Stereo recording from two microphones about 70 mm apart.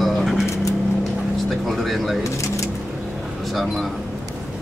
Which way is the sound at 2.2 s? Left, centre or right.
Left.